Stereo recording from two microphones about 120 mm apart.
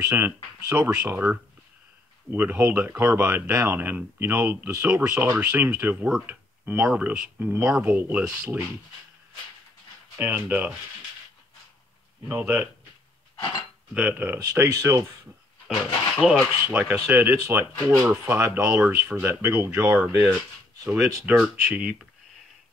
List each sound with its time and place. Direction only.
0.1 s speech: 20° right (ahead or behind)
6.2 s a sound: 15° right (ahead or behind)
6.9 s speech: 10° right (ahead or behind)
10.1 s speech: 15° right (ahead or behind)
12.3 s speech: 15° right (ahead or behind)
13.4 s speech: 35° left (ahead or behind)
13.9 s speech: 15° right (ahead or behind)
14.5 s speech: 30° right (ahead or behind)
16.2 s speech: 5° right (ahead or behind); by 17.9 s 20° right (ahead or behind)
18.0 s speech: 10° right (ahead or behind)
21.0 s speech: 5° right (ahead or behind)